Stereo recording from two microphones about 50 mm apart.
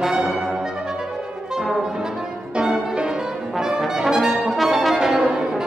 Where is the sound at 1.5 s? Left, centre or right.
Centre.